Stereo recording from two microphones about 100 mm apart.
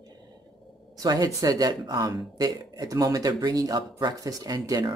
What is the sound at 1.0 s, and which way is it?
Speech, 40° right (ahead or behind).